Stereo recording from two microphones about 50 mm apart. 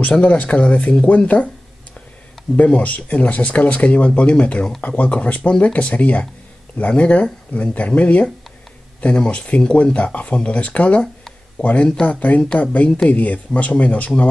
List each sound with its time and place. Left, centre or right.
0.2 s speech: left
2.5 s speech: left